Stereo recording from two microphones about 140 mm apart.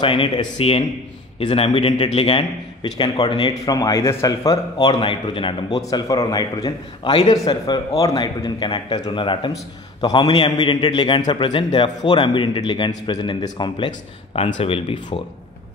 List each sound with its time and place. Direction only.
0.0 s a man's voice: 35° left (ahead or behind)
7.1 s a man's voice: 40° left (ahead or behind)